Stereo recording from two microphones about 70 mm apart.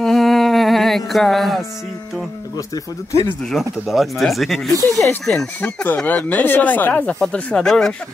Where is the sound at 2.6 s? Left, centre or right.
Left.